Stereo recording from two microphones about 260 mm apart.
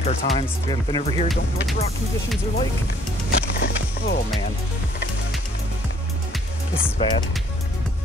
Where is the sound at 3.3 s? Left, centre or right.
Left.